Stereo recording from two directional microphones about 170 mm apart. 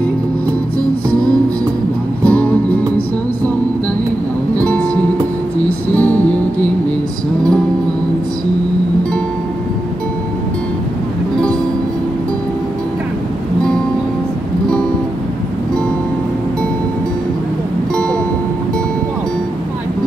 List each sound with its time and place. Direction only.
2.2 s music: 10° left (ahead or behind)
4.6 s music: 10° left (ahead or behind)